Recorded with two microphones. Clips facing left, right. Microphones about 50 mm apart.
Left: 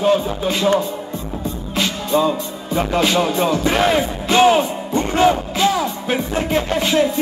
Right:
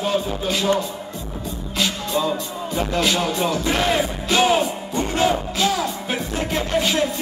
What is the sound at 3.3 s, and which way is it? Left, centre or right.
Music, centre.